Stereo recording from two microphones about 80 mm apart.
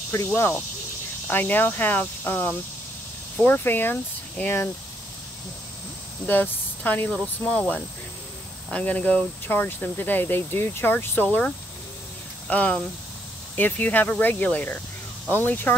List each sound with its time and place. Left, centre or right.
0.3 s speech: left
6.2 s speech: left
11.2 s speech: centre